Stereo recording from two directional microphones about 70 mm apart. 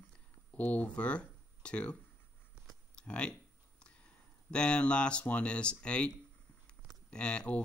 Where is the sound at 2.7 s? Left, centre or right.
Centre.